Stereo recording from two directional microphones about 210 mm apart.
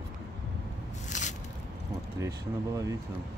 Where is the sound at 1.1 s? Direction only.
35° left (ahead or behind).